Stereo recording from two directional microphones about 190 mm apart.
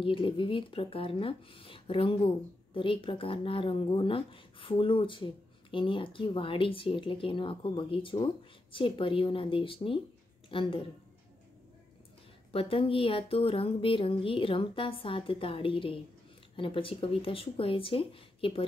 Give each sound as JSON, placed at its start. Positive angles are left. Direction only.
{"t": 0.0, "sound": "speech", "side_deg": 25}
{"t": 12.5, "sound": "speech", "side_deg": 30}